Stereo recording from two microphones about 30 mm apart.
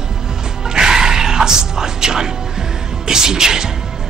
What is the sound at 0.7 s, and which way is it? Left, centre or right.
Music, right.